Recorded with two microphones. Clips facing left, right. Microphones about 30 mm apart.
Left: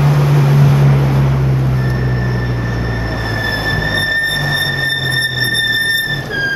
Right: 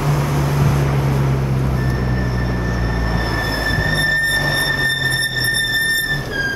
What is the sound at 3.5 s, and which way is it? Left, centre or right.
Squeal, left.